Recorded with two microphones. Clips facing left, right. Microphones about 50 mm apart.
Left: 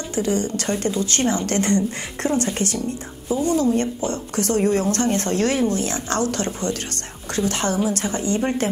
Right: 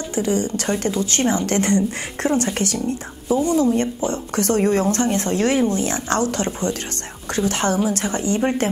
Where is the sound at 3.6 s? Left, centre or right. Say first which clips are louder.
Right 2 dB; right.